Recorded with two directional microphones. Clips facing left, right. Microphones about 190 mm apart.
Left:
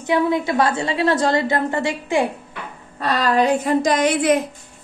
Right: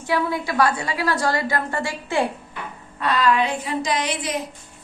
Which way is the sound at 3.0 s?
40° left (ahead or behind).